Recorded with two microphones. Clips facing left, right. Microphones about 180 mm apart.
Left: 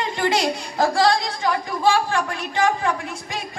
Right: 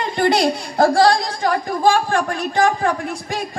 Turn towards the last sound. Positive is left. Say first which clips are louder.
# right 5 dB
turn(degrees=-35)  # may be behind; listen again after turning